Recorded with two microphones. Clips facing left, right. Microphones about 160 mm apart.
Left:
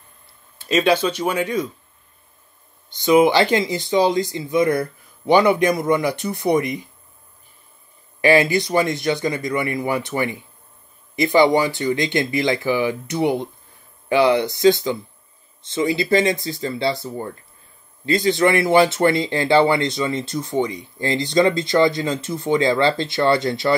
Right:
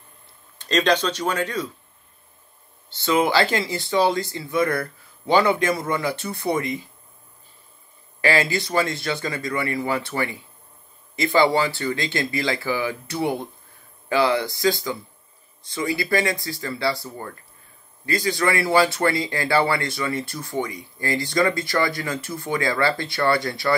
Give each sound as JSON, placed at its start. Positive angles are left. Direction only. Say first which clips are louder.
{"t": 0.6, "sound": "speech", "louder": "left 3 dB", "side_deg": 10}
{"t": 2.9, "sound": "speech", "louder": "left 6 dB", "side_deg": 15}
{"t": 8.2, "sound": "speech", "louder": "left 6 dB", "side_deg": 20}